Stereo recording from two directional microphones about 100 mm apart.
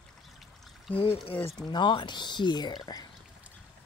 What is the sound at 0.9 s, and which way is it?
Speech, 65° left (ahead or behind).